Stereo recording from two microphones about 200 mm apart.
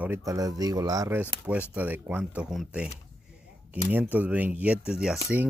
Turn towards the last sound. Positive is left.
turn(degrees=-5)  # may be behind; listen again after turning